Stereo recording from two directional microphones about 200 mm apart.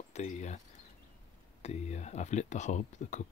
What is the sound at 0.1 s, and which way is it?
Speech, 35° left (ahead or behind).